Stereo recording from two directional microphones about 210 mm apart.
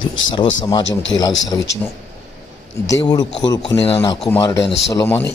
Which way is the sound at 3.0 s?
20° left (ahead or behind).